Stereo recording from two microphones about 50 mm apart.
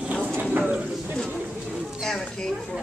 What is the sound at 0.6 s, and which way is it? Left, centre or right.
Speech, right.